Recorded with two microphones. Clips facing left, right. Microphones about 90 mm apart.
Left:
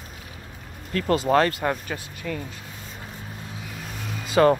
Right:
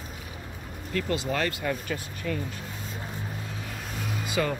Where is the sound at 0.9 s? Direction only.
50° left (ahead or behind).